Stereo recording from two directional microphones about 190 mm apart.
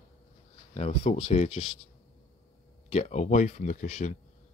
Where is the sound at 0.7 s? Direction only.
35° left (ahead or behind).